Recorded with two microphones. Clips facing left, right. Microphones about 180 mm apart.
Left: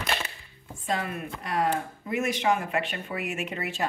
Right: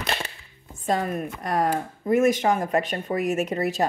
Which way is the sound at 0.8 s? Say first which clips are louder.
Right 6 dB; 40° right (ahead or behind).